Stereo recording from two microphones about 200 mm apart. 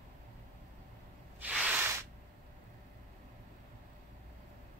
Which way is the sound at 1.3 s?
5° right (ahead or behind).